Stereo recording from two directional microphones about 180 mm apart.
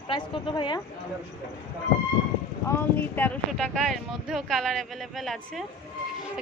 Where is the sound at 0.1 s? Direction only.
25° left (ahead or behind).